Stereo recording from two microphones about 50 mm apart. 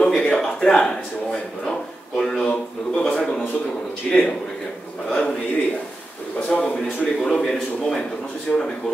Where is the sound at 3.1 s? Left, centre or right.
Centre.